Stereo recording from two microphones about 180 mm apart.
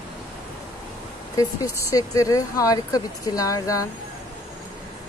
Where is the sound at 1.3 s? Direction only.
20° left (ahead or behind).